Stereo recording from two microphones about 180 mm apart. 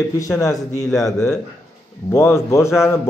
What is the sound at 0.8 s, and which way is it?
Speech, centre (ahead or behind).